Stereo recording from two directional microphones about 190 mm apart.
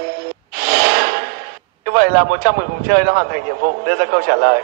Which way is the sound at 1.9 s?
50° right (ahead or behind).